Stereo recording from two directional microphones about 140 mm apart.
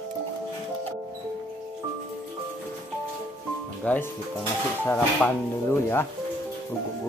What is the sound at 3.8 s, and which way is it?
Speech, 10° left (ahead or behind).